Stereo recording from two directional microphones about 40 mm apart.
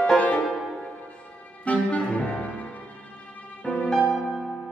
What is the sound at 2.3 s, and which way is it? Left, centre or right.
Music, left.